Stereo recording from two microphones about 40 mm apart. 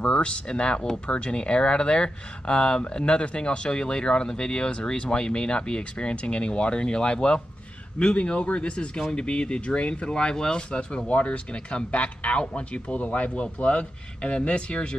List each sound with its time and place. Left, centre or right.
0.0 s speech: left